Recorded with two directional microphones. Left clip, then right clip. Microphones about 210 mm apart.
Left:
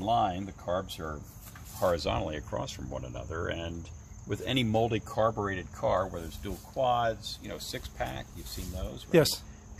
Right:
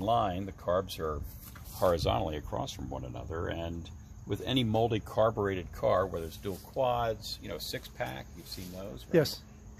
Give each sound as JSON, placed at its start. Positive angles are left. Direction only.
{"t": 0.0, "sound": "speech", "side_deg": -40}
{"t": 8.7, "sound": "speech", "side_deg": -10}
{"t": 9.1, "sound": "speech", "side_deg": 10}